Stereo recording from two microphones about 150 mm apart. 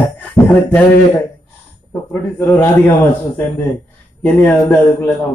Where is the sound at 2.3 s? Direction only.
15° left (ahead or behind).